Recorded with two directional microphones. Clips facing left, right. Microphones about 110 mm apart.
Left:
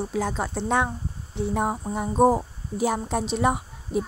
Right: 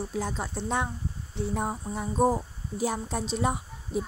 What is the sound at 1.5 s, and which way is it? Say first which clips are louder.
A woman's voice: left 6 dB; 65° left (ahead or behind).